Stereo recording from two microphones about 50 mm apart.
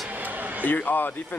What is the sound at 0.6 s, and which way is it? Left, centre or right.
Speech, left.